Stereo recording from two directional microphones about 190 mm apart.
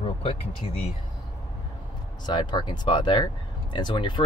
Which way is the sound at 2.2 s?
25° left (ahead or behind).